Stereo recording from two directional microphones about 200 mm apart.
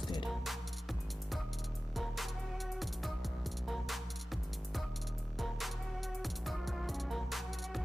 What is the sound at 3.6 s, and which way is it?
Music, centre (ahead or behind).